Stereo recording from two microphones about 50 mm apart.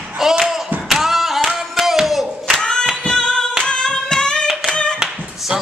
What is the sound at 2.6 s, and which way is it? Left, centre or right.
Singing, centre.